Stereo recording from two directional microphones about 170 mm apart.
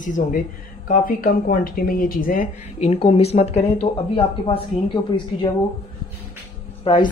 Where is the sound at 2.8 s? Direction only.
40° left (ahead or behind).